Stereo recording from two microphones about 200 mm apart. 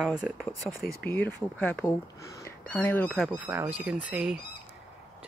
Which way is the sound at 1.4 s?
5° left (ahead or behind).